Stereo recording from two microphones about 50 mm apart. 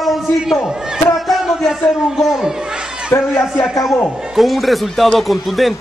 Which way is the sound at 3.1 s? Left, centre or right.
Left.